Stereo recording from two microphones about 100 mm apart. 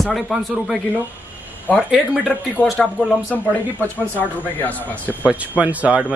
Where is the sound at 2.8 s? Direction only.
15° left (ahead or behind).